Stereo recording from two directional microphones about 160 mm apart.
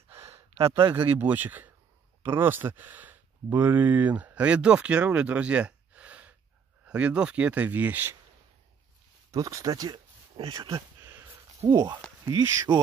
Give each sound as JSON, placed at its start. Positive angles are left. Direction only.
{"t": 0.6, "sound": "speech", "side_deg": -20}
{"t": 9.3, "sound": "speech", "side_deg": -20}
{"t": 11.0, "sound": "a sound", "side_deg": -15}
{"t": 11.6, "sound": "speech", "side_deg": -25}